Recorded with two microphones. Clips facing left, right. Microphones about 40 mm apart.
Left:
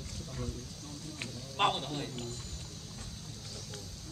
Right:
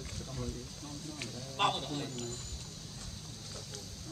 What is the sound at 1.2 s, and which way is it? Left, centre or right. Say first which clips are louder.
A man's voice: left 2 dB; centre.